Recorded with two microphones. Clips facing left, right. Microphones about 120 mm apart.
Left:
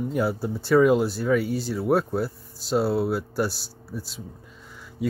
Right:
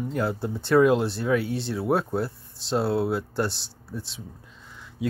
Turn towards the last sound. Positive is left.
turn(degrees=0)  # may be behind; listen again after turning